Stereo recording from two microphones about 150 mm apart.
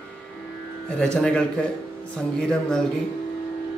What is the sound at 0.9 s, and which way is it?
Speech, 5° left (ahead or behind).